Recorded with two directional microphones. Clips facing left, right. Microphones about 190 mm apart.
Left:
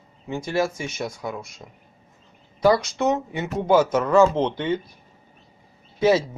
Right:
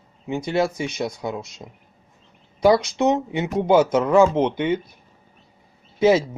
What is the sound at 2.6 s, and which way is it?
Speech, 15° right (ahead or behind).